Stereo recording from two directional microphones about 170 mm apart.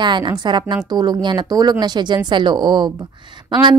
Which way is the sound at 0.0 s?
25° right (ahead or behind).